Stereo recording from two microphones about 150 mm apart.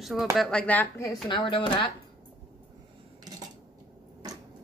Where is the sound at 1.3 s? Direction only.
30° left (ahead or behind).